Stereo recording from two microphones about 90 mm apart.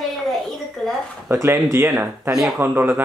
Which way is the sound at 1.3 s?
30° right (ahead or behind).